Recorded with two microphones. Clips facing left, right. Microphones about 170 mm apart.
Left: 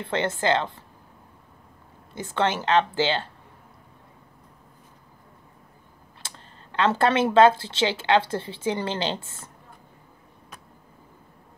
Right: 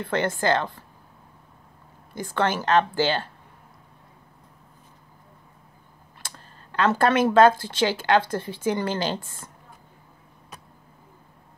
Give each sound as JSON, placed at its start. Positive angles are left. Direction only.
{"t": 0.1, "sound": "a woman's voice", "side_deg": 20}
{"t": 2.1, "sound": "a woman's voice", "side_deg": 25}
{"t": 6.2, "sound": "computer keyboard", "side_deg": 25}
{"t": 7.3, "sound": "a woman's voice", "side_deg": 25}